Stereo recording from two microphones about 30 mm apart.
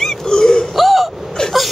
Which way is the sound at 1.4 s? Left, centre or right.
Left.